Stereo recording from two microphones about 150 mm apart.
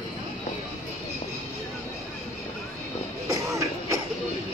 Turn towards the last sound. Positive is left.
turn(degrees=-20)  # may be behind; listen again after turning